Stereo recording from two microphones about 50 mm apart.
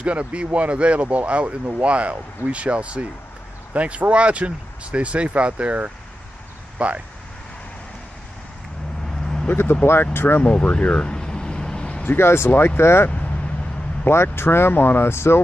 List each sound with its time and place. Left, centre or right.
0.0 s speech: right
9.2 s vehicle: centre
9.5 s speech: left
10.4 s a sound: left
12.2 s speech: left